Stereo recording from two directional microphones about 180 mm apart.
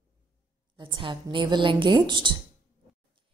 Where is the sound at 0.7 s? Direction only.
30° right (ahead or behind).